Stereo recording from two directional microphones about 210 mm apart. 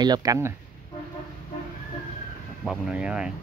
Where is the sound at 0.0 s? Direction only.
20° right (ahead or behind).